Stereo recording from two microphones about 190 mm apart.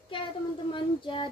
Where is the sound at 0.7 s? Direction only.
25° left (ahead or behind).